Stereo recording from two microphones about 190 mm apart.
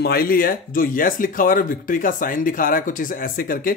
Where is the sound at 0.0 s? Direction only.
50° left (ahead or behind).